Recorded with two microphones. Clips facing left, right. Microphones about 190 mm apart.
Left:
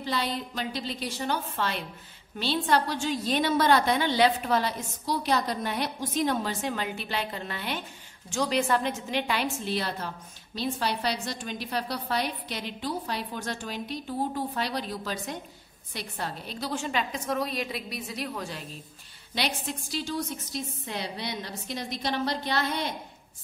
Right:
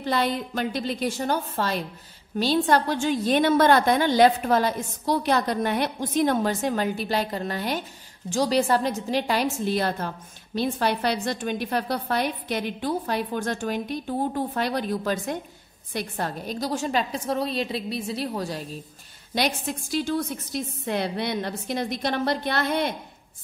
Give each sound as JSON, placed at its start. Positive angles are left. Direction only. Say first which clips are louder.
{"t": 0.0, "sound": "a woman's voice", "louder": "right 6 dB", "side_deg": -55}
{"t": 19.3, "sound": "a woman's voice", "louder": "right 5 dB", "side_deg": -50}